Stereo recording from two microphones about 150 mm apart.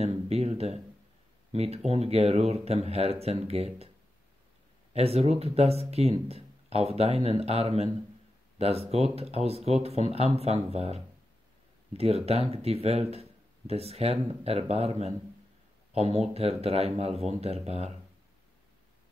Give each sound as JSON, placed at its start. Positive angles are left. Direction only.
{"t": 0.0, "sound": "a sound", "side_deg": -45}
{"t": 1.5, "sound": "speech", "side_deg": -45}
{"t": 4.9, "sound": "speech", "side_deg": -45}